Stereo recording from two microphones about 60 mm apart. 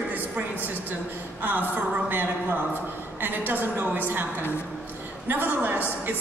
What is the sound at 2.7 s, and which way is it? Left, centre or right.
A woman's voice, right.